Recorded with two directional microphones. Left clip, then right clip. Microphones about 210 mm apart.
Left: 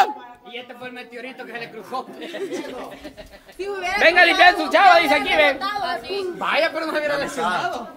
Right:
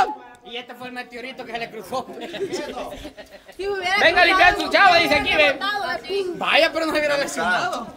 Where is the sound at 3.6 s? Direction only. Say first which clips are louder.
Right 2 dB; 20° right (ahead or behind).